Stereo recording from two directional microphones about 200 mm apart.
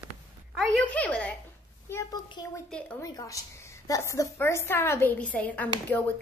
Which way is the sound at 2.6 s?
5° left (ahead or behind).